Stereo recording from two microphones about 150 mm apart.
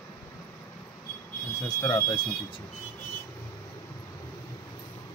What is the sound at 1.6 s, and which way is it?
Speech, 25° left (ahead or behind).